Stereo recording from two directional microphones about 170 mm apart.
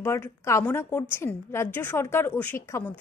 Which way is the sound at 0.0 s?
15° left (ahead or behind).